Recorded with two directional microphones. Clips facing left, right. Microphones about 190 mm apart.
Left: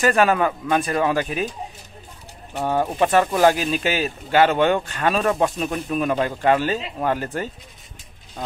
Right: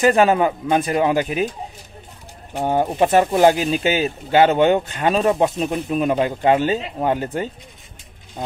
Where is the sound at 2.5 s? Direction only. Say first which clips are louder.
Right 2 dB; 20° right (ahead or behind).